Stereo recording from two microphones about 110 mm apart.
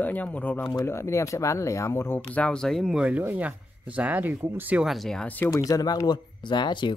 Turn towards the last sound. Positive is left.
turn(degrees=45)  # may be behind; listen again after turning